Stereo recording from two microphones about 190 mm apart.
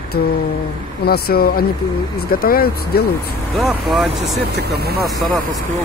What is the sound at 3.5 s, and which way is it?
Speech, centre (ahead or behind).